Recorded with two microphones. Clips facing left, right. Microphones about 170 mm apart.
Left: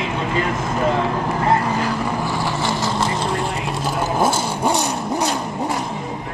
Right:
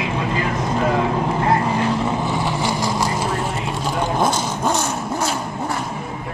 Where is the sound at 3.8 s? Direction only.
5° left (ahead or behind).